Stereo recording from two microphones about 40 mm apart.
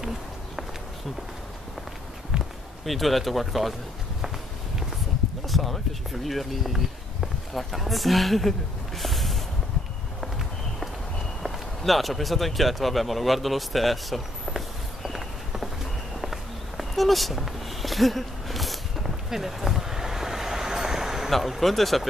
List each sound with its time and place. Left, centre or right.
2.3 s basketball bounce: right
2.8 s speech: centre
5.5 s speech: centre
11.4 s speech: centre
15.0 s walk: centre
21.3 s speech: centre